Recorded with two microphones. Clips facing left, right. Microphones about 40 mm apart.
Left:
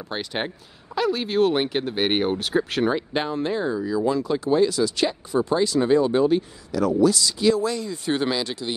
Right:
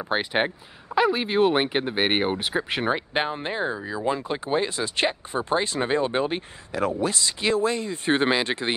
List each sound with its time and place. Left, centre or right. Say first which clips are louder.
0.1 s speech: right 4 dB; right